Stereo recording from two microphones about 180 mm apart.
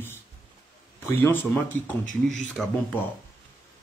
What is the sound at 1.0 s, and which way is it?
Speech, 15° left (ahead or behind).